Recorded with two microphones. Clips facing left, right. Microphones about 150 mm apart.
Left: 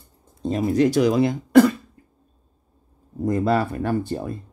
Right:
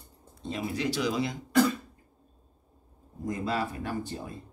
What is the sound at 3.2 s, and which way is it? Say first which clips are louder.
Speech: left 10 dB; 60° left (ahead or behind).